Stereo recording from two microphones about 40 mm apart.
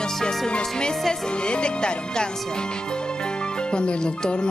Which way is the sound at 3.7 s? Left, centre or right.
Left.